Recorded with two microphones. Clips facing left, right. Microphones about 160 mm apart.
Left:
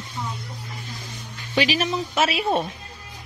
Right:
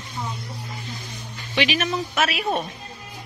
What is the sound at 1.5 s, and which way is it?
A woman's voice, 35° left (ahead or behind).